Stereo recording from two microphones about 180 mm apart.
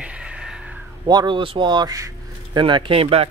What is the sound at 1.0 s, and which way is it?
Speech, 25° right (ahead or behind).